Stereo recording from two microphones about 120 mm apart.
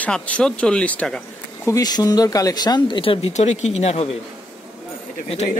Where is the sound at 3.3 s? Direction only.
70° left (ahead or behind).